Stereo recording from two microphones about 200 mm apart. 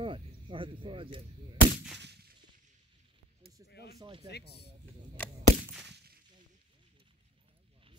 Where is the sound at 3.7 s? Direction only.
55° left (ahead or behind).